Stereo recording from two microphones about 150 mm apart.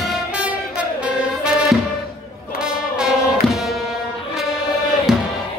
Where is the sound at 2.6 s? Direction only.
5° right (ahead or behind).